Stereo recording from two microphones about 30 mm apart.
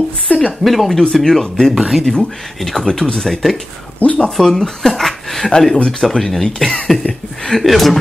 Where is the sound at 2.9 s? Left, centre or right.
Centre.